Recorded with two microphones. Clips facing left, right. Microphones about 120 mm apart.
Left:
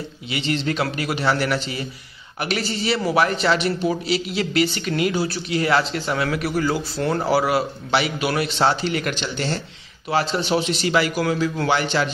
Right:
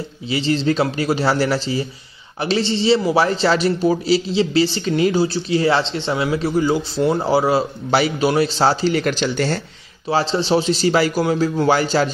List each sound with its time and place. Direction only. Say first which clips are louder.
0.3 s a man's voice: right 5 dB; 35° right (ahead or behind)
10.0 s a man's voice: right 3 dB; 30° right (ahead or behind)